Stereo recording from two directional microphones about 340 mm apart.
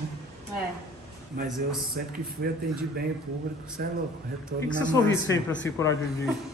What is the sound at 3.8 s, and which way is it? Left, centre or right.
Speech, right.